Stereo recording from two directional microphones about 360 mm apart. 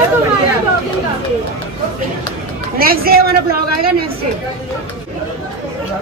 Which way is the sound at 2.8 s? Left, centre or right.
Right.